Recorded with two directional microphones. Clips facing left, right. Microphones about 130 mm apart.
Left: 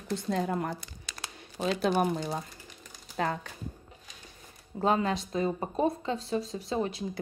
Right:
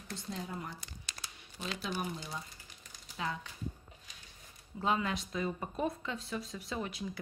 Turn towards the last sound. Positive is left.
turn(degrees=30)  # may be behind; listen again after turning